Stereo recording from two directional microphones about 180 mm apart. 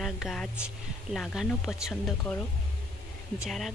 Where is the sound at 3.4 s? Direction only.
Centre (ahead or behind).